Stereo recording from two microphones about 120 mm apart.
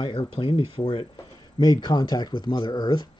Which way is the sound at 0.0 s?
40° left (ahead or behind).